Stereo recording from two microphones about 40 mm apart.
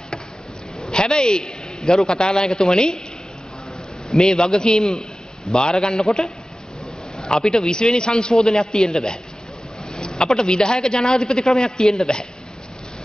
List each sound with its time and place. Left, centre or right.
0.9 s a man's voice: left
4.3 s a man's voice: centre
7.3 s a man's voice: centre